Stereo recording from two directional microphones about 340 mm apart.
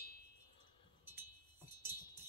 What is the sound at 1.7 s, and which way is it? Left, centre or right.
Music, centre.